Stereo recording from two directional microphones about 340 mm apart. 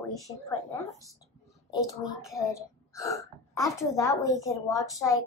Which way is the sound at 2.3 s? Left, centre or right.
Centre.